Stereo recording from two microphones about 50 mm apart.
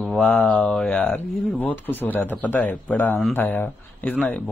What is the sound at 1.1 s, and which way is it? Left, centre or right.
Speech, left.